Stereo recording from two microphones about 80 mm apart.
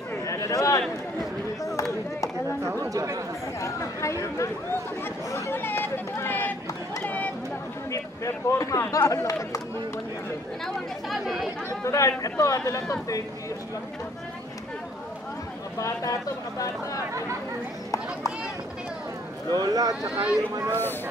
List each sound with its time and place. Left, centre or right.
0.3 s a man's voice: left
2.6 s chatter: right
3.6 s speech: left
5.3 s speech: left
7.0 s a sound: centre
7.9 s speech: left
11.1 s speech: centre
11.8 s speech: left
15.8 s speech: left
19.5 s speech: right
20.1 s speech: centre